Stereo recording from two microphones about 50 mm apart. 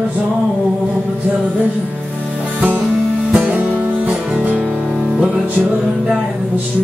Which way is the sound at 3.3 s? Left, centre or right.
Right.